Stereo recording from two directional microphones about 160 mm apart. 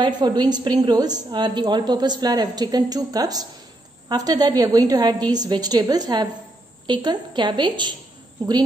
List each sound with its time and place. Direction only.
0.0 s a woman's voice: 25° right (ahead or behind)